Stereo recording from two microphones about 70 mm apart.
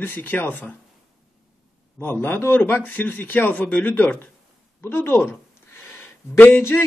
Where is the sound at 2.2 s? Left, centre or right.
Left.